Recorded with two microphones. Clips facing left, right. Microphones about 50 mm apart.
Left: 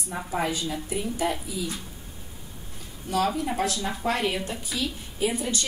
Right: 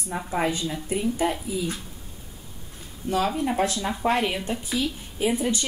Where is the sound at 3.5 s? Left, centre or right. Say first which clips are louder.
Right 3 dB; right.